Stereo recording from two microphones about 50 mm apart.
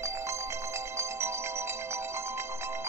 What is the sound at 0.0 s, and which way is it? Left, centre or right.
Ringtone, right.